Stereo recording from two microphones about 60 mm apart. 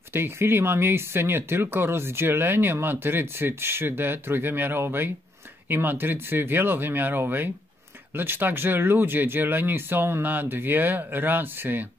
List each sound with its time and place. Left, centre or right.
0.1 s speech: right